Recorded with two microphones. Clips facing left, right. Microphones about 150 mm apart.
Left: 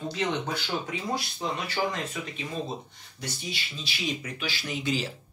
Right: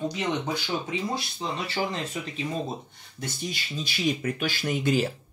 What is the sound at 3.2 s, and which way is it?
Speech, 50° right (ahead or behind).